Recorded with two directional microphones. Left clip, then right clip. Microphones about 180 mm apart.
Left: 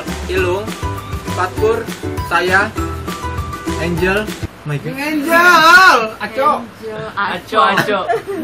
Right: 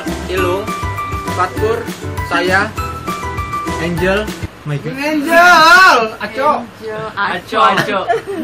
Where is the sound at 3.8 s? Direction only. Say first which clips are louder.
Even; 10° left (ahead or behind).